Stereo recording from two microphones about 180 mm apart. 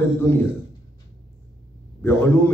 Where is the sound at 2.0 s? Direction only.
10° left (ahead or behind).